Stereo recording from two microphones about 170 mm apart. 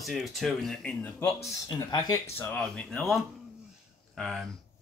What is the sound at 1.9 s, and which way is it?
Speech, 20° left (ahead or behind).